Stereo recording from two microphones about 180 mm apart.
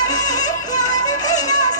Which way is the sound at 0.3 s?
20° left (ahead or behind).